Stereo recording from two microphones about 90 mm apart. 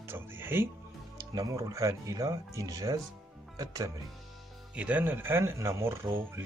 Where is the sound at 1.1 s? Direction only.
40° right (ahead or behind).